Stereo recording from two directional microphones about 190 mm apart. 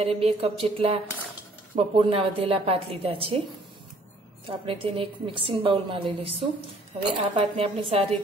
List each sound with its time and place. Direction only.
0.0 s a woman's voice: 30° right (ahead or behind)
2.0 s a woman's voice: 30° right (ahead or behind)
4.5 s a woman's voice: 30° right (ahead or behind)